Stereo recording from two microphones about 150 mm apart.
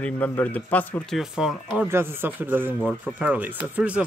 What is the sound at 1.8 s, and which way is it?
Speech, 15° right (ahead or behind).